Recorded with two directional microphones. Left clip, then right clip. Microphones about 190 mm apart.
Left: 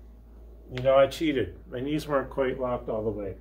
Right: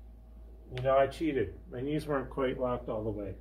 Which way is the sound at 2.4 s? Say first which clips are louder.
Left 3 dB; centre (ahead or behind).